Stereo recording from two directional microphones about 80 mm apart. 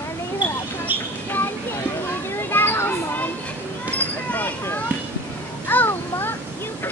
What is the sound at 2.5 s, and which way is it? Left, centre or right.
Children playing, left.